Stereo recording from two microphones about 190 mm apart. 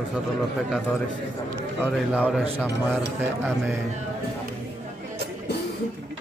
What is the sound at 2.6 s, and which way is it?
Cutlery, 10° right (ahead or behind).